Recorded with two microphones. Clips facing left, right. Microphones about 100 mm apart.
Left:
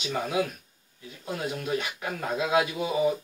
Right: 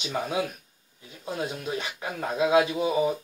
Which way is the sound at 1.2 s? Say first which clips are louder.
Right 1 dB; 25° right (ahead or behind).